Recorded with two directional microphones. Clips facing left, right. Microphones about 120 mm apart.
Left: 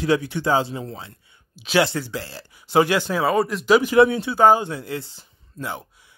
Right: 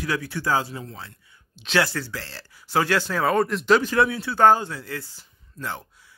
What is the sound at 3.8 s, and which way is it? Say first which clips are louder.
Speech: left 6 dB; 15° left (ahead or behind).